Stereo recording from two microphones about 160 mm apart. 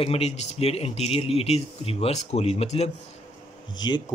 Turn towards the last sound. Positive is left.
turn(degrees=25)  # may be behind; listen again after turning